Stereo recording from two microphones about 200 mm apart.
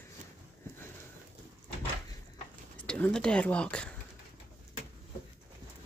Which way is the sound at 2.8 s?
5° left (ahead or behind).